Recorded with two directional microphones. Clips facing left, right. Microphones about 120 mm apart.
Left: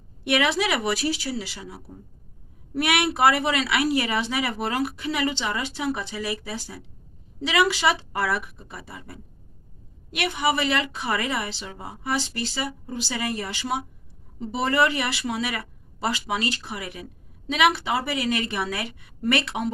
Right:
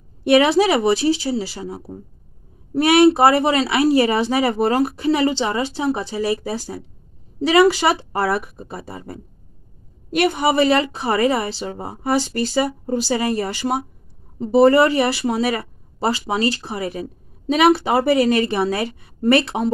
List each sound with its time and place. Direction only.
0.2 s speech: 35° right (ahead or behind)